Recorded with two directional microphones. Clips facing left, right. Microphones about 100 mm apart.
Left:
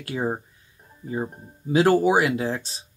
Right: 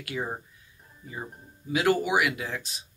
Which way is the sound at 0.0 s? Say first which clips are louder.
Left 6 dB; 30° left (ahead or behind).